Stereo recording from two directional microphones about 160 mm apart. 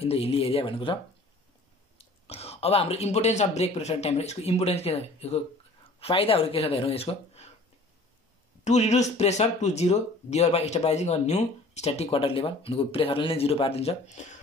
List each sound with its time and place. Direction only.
0.0 s speech: 40° left (ahead or behind)
2.0 s speech: 40° left (ahead or behind)
8.6 s speech: 45° left (ahead or behind)